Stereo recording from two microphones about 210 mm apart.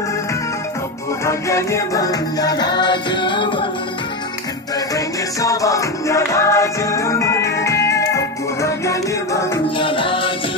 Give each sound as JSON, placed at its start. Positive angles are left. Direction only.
{"t": 1.2, "sound": "music", "side_deg": 15}
{"t": 4.9, "sound": "music", "side_deg": 15}